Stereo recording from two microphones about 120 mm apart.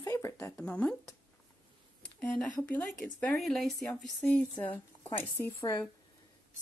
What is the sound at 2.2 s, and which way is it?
A woman's voice, 10° left (ahead or behind).